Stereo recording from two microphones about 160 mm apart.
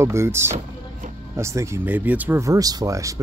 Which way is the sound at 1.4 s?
15° right (ahead or behind).